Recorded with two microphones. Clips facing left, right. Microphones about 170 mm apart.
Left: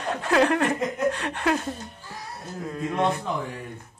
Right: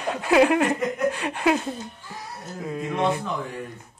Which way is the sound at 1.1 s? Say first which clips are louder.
Right 3 dB; 5° right (ahead or behind).